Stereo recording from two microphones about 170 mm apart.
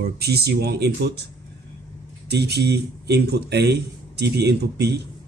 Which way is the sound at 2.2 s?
75° right (ahead or behind).